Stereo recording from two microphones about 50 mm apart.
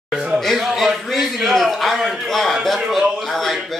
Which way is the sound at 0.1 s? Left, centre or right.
Centre.